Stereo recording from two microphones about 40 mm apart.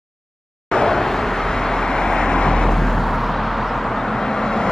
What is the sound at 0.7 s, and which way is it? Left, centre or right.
Vehicle, centre.